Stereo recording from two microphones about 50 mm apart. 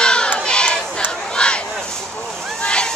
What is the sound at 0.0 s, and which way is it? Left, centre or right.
Crowd, centre.